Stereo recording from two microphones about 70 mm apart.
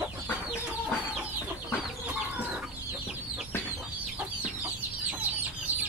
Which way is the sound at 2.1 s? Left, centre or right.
Centre.